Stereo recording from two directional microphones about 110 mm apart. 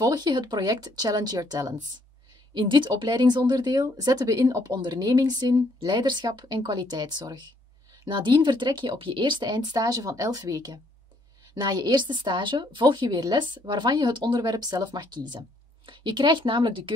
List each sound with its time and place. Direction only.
0.0 s speech: 40° right (ahead or behind)
2.5 s speech: 45° right (ahead or behind)